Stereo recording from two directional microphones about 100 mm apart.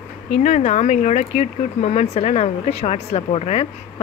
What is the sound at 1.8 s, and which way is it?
Speech, 90° left.